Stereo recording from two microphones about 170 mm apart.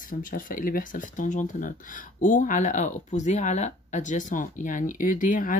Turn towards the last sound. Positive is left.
turn(degrees=50)  # may be behind; listen again after turning